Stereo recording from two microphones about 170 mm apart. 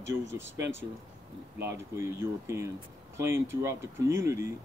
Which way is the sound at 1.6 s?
15° right (ahead or behind).